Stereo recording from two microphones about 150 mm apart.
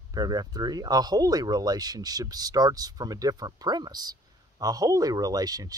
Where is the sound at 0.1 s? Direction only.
25° right (ahead or behind).